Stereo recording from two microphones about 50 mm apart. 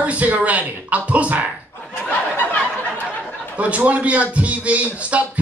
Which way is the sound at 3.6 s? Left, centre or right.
Right.